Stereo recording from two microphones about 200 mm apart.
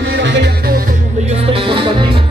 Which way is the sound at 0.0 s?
65° right (ahead or behind).